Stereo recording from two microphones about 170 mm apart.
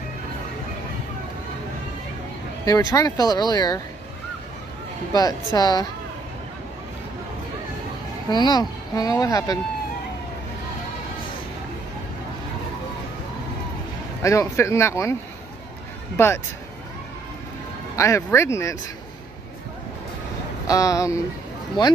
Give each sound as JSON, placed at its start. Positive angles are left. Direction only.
{"t": 2.6, "sound": "speech", "side_deg": 20}
{"t": 5.1, "sound": "speech", "side_deg": 20}
{"t": 8.3, "sound": "speech", "side_deg": 25}
{"t": 14.2, "sound": "speech", "side_deg": 20}
{"t": 16.2, "sound": "speech", "side_deg": 15}
{"t": 17.9, "sound": "speech", "side_deg": 15}
{"t": 20.6, "sound": "speech", "side_deg": 20}